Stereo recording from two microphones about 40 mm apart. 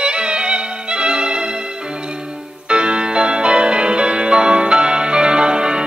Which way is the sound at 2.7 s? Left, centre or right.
Right.